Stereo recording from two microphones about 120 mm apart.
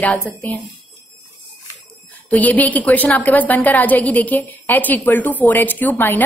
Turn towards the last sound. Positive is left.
turn(degrees=15)  # may be behind; listen again after turning